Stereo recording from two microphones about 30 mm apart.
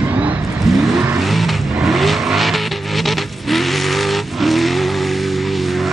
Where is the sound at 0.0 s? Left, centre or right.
Right.